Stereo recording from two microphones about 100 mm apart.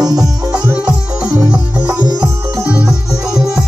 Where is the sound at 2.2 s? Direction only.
10° right (ahead or behind).